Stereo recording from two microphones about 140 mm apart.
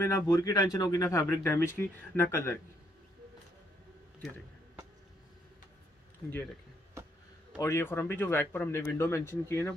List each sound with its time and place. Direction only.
0.0 s speech: 25° left (ahead or behind)
7.5 s speech: 20° left (ahead or behind)